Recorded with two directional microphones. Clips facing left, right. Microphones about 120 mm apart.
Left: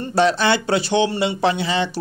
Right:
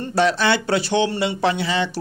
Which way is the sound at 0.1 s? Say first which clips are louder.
Left 1 dB; 25° left (ahead or behind).